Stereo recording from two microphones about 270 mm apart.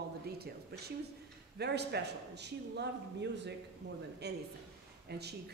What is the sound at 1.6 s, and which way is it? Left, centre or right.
A man's voice, right.